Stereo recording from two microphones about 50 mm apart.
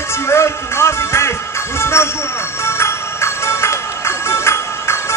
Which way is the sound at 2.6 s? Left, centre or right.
Left.